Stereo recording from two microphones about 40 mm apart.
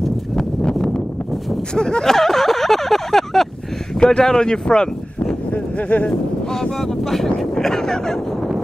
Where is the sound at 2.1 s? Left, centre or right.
Centre.